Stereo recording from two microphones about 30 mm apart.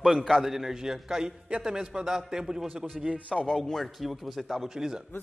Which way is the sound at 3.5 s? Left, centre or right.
Centre.